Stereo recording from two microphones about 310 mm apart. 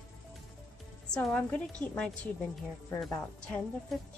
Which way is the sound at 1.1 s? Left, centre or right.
Centre.